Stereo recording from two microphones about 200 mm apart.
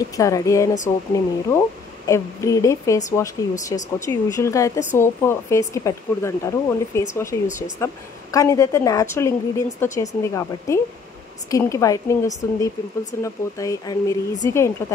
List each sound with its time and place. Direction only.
0.1 s speech: 15° left (ahead or behind)